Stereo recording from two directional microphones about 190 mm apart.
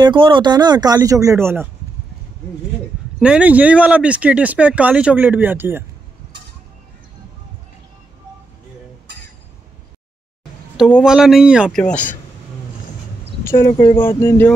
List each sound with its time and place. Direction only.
0.0 s speech: 25° right (ahead or behind)
3.2 s speech: 5° right (ahead or behind)
10.8 s a woman's voice: 5° right (ahead or behind)
13.4 s speech: 15° left (ahead or behind)